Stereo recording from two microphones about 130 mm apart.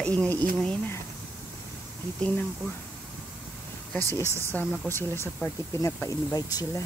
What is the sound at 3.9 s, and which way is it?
Speech, 10° left (ahead or behind).